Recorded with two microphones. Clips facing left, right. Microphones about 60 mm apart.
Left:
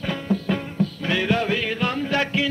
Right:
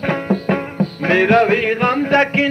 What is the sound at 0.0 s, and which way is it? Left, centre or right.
Music, right.